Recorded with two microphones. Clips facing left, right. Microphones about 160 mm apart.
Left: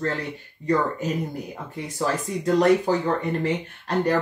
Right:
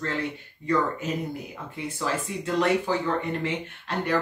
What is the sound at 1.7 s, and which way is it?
Speech, 40° left (ahead or behind).